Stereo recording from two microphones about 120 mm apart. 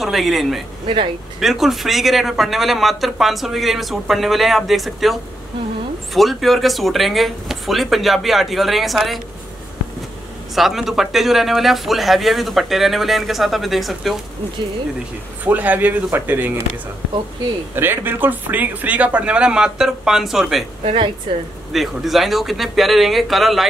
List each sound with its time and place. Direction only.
0.0 s speech: centre (ahead or behind)
10.5 s speech: centre (ahead or behind)
15.4 s speech: 15° right (ahead or behind)
17.7 s speech: 15° right (ahead or behind)
20.8 s a woman's voice: 45° right (ahead or behind)
21.7 s speech: centre (ahead or behind)